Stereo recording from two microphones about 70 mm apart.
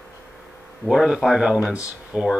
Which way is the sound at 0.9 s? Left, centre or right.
Centre.